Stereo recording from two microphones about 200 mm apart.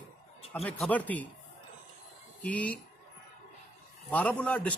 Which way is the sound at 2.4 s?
5° left (ahead or behind).